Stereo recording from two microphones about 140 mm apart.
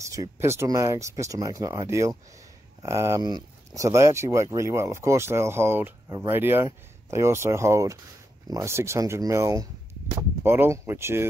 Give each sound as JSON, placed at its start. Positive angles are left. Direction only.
{"t": 0.0, "sound": "speech", "side_deg": -20}